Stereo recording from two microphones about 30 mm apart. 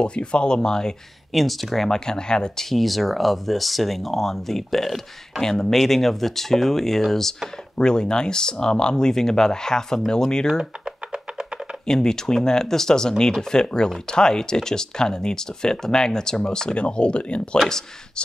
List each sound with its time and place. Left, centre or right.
0.0 s speech: left
1.3 s speech: centre
1.9 s speech: left
2.7 s speech: centre
7.8 s speech: left
10.6 s computer keyboard: right
11.9 s speech: left